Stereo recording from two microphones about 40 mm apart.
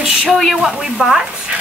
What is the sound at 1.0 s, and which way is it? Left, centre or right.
Speech, centre.